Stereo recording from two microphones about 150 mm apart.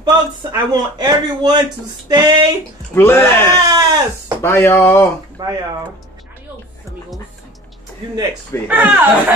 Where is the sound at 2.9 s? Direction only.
15° left (ahead or behind).